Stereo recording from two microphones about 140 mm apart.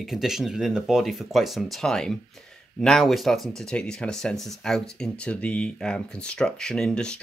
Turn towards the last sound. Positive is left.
turn(degrees=5)  # may be behind; listen again after turning